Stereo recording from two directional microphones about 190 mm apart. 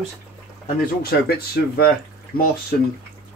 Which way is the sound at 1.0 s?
55° left (ahead or behind).